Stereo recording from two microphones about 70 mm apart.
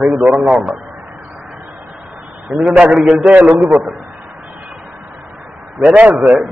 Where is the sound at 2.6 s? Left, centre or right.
Centre.